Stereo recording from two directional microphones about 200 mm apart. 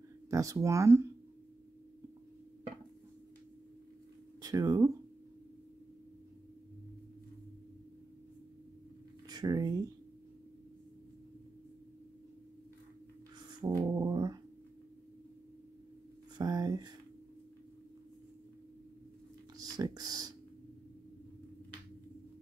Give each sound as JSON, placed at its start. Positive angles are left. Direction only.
{"t": 0.3, "sound": "speech", "side_deg": -15}
{"t": 4.4, "sound": "speech", "side_deg": -20}
{"t": 9.3, "sound": "speech", "side_deg": -20}
{"t": 13.5, "sound": "music", "side_deg": -20}
{"t": 16.3, "sound": "a sound", "side_deg": -20}
{"t": 19.5, "sound": "typing", "side_deg": -20}